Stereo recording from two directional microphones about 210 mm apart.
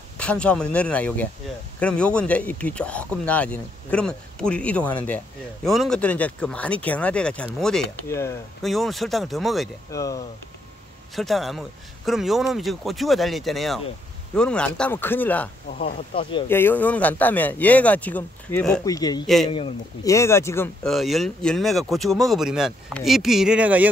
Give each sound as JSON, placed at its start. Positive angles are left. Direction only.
{"t": 0.2, "sound": "speech", "side_deg": 5}
{"t": 8.6, "sound": "speech", "side_deg": 0}
{"t": 9.8, "sound": "speech", "side_deg": 15}
{"t": 11.1, "sound": "speech", "side_deg": 0}
{"t": 15.8, "sound": "speech", "side_deg": 25}
{"t": 16.4, "sound": "speech", "side_deg": 10}
{"t": 18.9, "sound": "speech", "side_deg": 15}
{"t": 19.2, "sound": "speech", "side_deg": 0}
{"t": 20.1, "sound": "speech", "side_deg": 15}